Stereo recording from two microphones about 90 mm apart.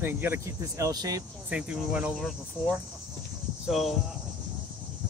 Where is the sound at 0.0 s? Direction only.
25° right (ahead or behind); by 1.2 s 45° right (ahead or behind).